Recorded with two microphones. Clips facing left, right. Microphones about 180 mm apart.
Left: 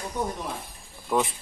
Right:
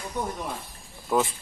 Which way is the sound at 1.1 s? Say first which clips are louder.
Right 1 dB; centre (ahead or behind).